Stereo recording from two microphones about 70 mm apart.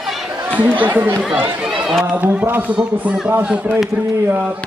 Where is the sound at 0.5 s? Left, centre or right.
Right.